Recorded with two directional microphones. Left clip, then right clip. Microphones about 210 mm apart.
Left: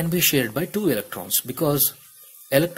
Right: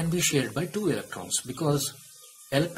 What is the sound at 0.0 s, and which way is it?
Speech, 35° left (ahead or behind).